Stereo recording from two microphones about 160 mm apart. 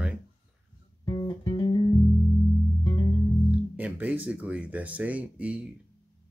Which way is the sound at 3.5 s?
10° right (ahead or behind).